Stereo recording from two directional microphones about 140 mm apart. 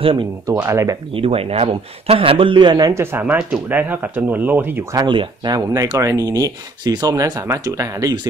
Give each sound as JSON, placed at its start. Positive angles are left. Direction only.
{"t": 0.0, "sound": "speech", "side_deg": -35}
{"t": 0.5, "sound": "speech", "side_deg": -20}
{"t": 1.1, "sound": "speech", "side_deg": -45}
{"t": 4.9, "sound": "speech", "side_deg": -35}